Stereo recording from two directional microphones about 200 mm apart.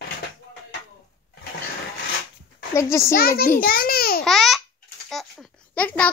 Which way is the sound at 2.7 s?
15° left (ahead or behind).